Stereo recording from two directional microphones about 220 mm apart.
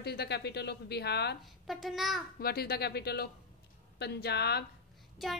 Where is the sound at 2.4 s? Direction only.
45° left (ahead or behind).